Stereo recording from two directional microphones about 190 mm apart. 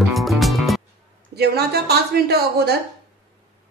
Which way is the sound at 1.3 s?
55° right (ahead or behind).